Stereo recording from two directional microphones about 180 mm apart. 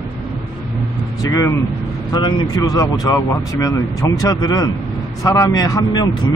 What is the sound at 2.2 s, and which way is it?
Speech, 20° left (ahead or behind).